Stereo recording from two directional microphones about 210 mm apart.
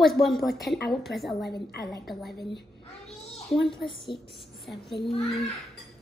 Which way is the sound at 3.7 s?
25° left (ahead or behind).